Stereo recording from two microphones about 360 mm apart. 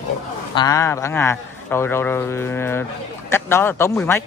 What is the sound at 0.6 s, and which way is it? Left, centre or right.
A man's voice, centre.